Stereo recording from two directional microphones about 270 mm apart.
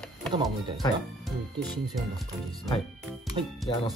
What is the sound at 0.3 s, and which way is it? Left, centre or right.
Speech, centre.